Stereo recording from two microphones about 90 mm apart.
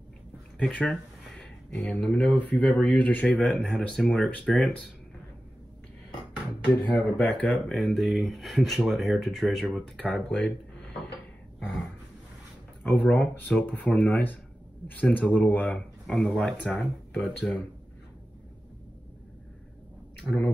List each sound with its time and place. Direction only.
0.6 s a sound: 10° left (ahead or behind)
1.8 s speech: 20° left (ahead or behind)
4.6 s speech: centre (ahead or behind)
6.7 s speech: 20° left (ahead or behind)
7.6 s speech: 5° left (ahead or behind)
9.8 s speech: 10° left (ahead or behind)
12.8 s speech: 15° left (ahead or behind)
20.2 s speech: 15° left (ahead or behind)